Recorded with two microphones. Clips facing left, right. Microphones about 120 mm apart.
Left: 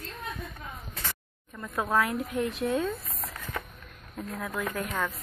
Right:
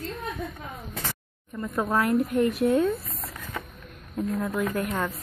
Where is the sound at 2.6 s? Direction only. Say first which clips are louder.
Right 6 dB; centre (ahead or behind).